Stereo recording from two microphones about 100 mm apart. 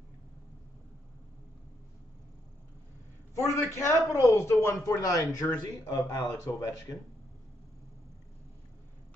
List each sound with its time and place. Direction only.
3.3 s a man's voice: 30° left (ahead or behind)